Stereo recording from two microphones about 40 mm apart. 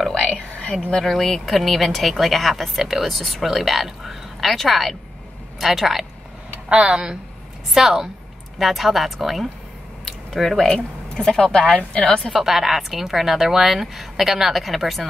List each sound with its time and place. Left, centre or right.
0.3 s a sound: left
1.1 s speech: centre
6.9 s speech: right
7.7 s a woman's voice: centre
10.0 s a sound: centre
10.7 s speech: centre
11.6 s a woman's voice: left
12.3 s a woman's voice: centre